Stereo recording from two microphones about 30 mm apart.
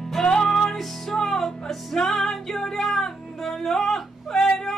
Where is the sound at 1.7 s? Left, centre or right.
Centre.